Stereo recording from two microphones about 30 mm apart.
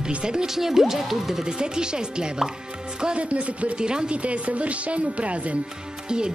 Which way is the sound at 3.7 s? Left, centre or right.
Right.